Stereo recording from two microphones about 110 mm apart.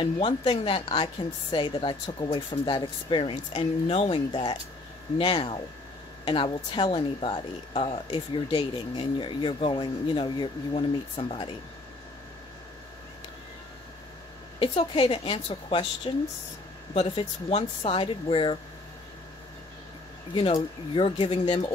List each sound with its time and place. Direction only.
0.0 s speech: 50° left (ahead or behind)
10.7 s speech: 60° left (ahead or behind)
14.6 s speech: 55° left (ahead or behind)
17.1 s speech: 65° left (ahead or behind)
17.6 s speech: 50° left (ahead or behind)
20.9 s speech: 55° left (ahead or behind)